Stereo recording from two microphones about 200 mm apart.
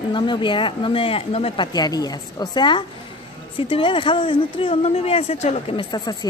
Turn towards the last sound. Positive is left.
turn(degrees=20)  # may be behind; listen again after turning